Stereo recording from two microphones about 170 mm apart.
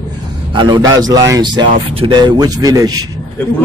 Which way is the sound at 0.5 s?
25° right (ahead or behind).